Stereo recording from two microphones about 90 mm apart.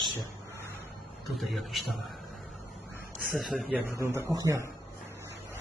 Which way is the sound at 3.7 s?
15° right (ahead or behind).